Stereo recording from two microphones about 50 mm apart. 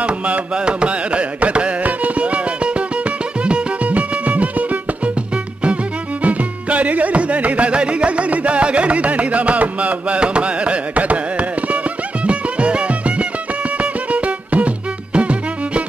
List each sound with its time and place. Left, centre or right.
0.0 s carnatic music: right
6.2 s music: right